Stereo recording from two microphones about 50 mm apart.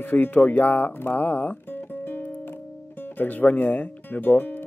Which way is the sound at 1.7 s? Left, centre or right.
Left.